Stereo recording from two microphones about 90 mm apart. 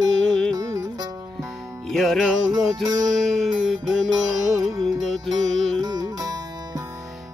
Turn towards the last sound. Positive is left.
turn(degrees=-45)  # may be behind; listen again after turning